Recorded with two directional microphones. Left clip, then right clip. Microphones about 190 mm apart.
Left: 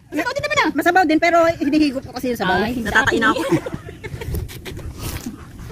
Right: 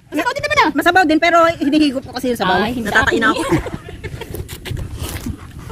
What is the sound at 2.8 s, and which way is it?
Speech, 5° left (ahead or behind).